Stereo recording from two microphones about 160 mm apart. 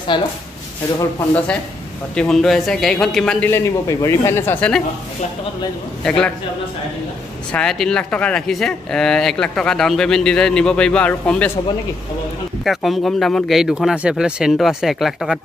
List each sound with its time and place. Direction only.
0.1 s speech: 30° left (ahead or behind)
2.1 s speech: 5° left (ahead or behind)
6.0 s speech: 5° left (ahead or behind)
7.5 s speech: 5° left (ahead or behind)
12.6 s speech: centre (ahead or behind)